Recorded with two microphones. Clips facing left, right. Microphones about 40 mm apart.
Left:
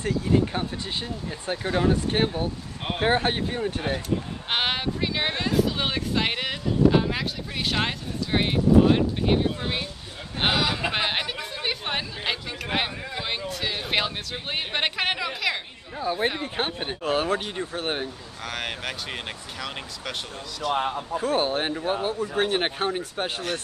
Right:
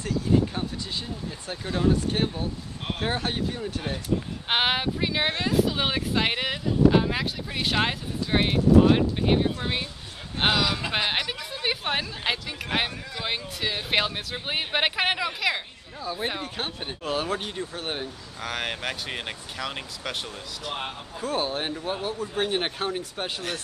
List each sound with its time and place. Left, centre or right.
0.0 s speech: left
4.5 s speech: centre
10.5 s speech: centre
16.0 s speech: left
18.4 s speech: centre
21.2 s speech: left